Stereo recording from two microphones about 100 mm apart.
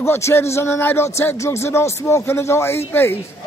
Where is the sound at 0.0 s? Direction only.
25° left (ahead or behind).